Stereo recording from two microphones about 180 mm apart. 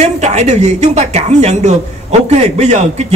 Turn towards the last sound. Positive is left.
turn(degrees=-40)  # may be behind; listen again after turning